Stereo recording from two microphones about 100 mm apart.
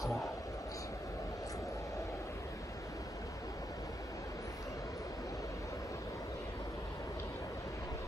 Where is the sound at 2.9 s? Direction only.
35° left (ahead or behind).